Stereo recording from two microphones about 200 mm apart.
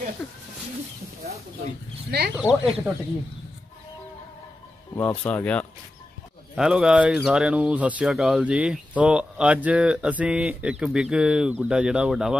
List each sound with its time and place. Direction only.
0.2 s speech: centre (ahead or behind)
2.0 s speech: 55° right (ahead or behind)
2.3 s speech: 5° right (ahead or behind)
4.9 s speech: 10° left (ahead or behind)